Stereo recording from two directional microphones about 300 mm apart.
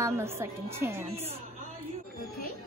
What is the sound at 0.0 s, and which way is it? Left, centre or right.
A woman's voice, centre.